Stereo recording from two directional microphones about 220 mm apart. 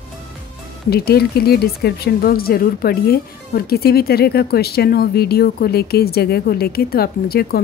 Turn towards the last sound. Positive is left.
turn(degrees=45)  # may be behind; listen again after turning